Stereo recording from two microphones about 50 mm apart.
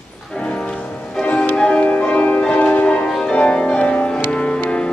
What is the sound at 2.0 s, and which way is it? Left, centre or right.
Music, left.